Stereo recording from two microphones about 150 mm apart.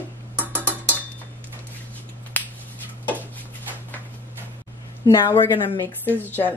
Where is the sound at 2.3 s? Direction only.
10° left (ahead or behind).